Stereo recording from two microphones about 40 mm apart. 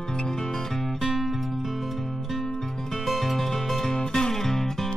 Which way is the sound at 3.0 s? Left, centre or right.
Centre.